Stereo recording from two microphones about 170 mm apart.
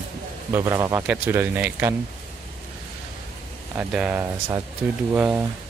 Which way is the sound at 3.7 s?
10° right (ahead or behind).